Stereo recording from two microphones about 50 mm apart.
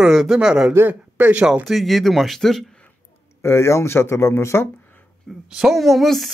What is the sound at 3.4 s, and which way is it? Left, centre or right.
Speech, left.